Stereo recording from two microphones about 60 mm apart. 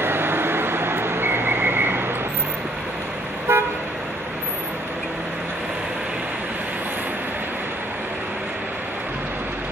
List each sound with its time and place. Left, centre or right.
0.0 s vehicle: right
3.5 s toot: right